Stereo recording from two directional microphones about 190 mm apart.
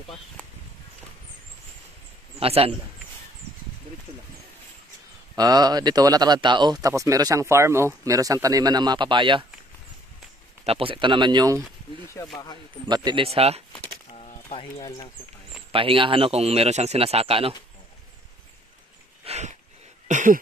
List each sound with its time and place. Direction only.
2.4 s speech: 30° right (ahead or behind)
5.3 s speech: 20° right (ahead or behind)
10.6 s speech: 30° right (ahead or behind)
12.2 s speech: 15° left (ahead or behind)
12.8 s speech: 25° right (ahead or behind)
14.1 s a sound: 35° left (ahead or behind)
15.7 s speech: 30° right (ahead or behind)
19.2 s a sound: 35° right (ahead or behind)
20.1 s cough: 40° right (ahead or behind)